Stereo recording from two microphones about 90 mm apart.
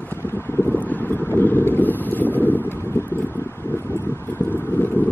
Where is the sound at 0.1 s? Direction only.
25° left (ahead or behind).